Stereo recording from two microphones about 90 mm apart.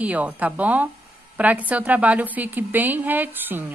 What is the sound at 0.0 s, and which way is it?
A woman's voice, 15° right (ahead or behind).